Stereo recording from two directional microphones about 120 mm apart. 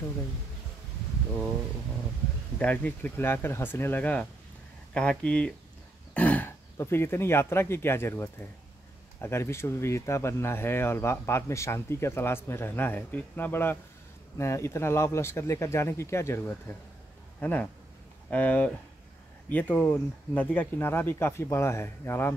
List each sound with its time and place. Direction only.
2.6 s speech: 15° left (ahead or behind)